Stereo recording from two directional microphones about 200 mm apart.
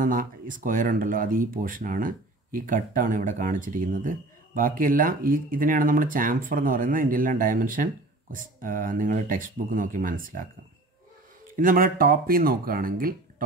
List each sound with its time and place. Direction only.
0.0 s speech: 40° right (ahead or behind)
11.5 s speech: 45° right (ahead or behind)